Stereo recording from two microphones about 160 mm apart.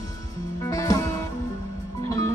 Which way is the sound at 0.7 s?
20° left (ahead or behind).